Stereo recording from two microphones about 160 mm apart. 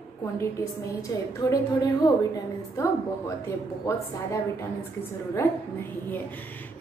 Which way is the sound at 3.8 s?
20° left (ahead or behind).